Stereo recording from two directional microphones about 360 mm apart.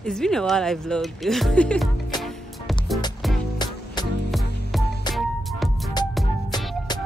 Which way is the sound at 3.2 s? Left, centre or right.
Centre.